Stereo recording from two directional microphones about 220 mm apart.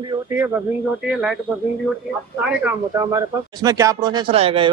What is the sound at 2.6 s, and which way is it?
Speech, 15° right (ahead or behind).